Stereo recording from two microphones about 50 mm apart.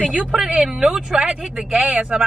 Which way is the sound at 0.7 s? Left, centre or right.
Centre.